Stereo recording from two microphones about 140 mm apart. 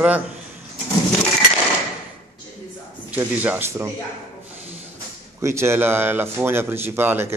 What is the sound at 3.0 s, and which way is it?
Speech, 15° right (ahead or behind).